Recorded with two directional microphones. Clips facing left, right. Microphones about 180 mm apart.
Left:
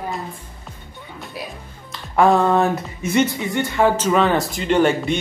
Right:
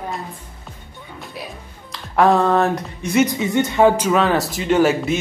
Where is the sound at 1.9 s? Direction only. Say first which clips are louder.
Even; centre (ahead or behind).